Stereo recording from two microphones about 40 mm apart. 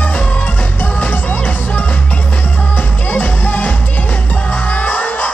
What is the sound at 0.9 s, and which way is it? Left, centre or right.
Music, left.